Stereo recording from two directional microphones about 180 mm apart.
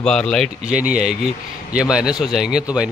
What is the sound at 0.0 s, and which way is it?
A man's voice, 5° left (ahead or behind).